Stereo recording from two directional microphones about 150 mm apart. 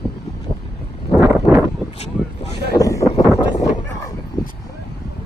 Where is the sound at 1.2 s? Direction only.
15° right (ahead or behind).